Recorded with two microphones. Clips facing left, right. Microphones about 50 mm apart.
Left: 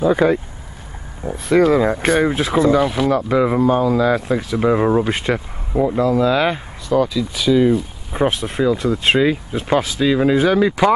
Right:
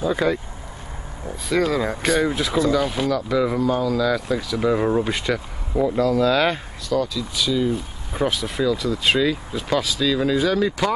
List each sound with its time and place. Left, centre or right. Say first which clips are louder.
0.0 s speech: left 6 dB; left
2.0 s speech: left 4 dB; left
8.2 s speech: left 4 dB; left